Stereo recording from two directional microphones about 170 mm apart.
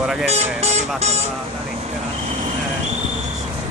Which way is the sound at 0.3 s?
40° right (ahead or behind).